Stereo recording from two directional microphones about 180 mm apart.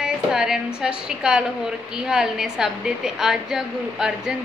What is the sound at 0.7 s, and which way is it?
Speech, 5° right (ahead or behind).